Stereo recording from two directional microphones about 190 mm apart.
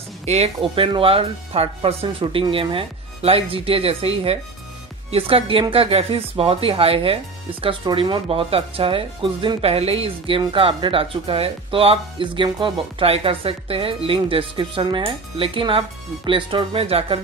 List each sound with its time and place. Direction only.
0.2 s speech: 35° right (ahead or behind)